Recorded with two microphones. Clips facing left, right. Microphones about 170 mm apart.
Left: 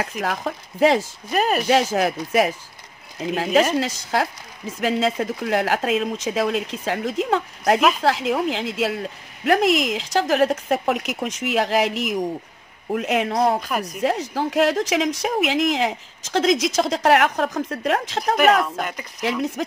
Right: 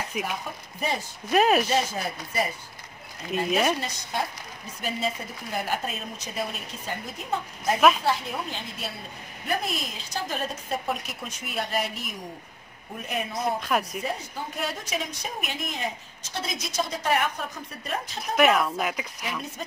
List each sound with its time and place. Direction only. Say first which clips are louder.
0.2 s speech: left 7 dB; 90° left
1.3 s speech: even; centre (ahead or behind)
1.7 s speech: left 8 dB; 90° left
13.6 s speech: left 1 dB; centre (ahead or behind)
14.0 s speech: left 10 dB; 90° left
18.3 s speech: left 4 dB; centre (ahead or behind)